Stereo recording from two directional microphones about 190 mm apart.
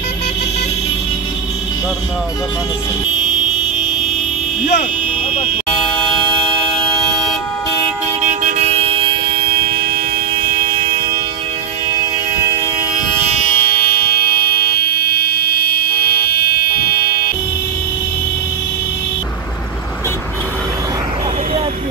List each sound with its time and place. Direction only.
5.7 s vehicle: 5° left (ahead or behind)
8.2 s toot: 40° right (ahead or behind)
9.4 s train: 50° right (ahead or behind)
13.1 s vehicle: 35° left (ahead or behind); by 17.2 s 55° left (ahead or behind)